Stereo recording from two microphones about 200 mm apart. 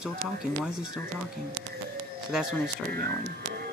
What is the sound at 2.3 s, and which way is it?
Speech, centre (ahead or behind).